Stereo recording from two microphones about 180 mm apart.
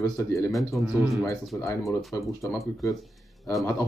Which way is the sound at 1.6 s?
15° left (ahead or behind).